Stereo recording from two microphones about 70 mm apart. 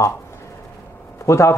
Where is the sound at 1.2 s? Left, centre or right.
Left.